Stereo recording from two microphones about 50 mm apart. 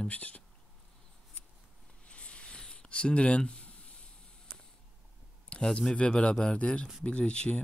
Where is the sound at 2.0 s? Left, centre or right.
Left.